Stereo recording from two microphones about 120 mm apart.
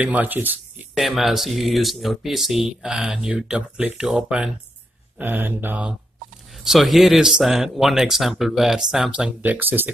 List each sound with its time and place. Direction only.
0.0 s mantra: 15° right (ahead or behind)
0.9 s speech: centre (ahead or behind)
5.2 s mantra: 15° right (ahead or behind)
6.6 s speech: centre (ahead or behind)